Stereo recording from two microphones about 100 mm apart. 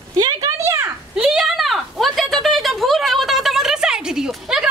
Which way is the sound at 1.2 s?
5° right (ahead or behind).